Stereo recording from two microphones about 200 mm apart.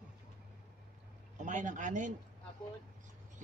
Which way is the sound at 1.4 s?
40° right (ahead or behind).